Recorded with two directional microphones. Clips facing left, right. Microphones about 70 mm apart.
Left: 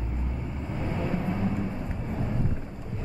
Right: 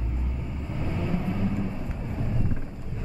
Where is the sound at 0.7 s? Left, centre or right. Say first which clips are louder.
Even; centre.